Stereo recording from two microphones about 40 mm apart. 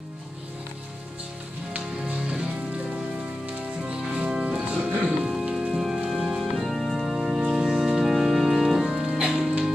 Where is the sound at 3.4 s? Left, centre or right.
Right.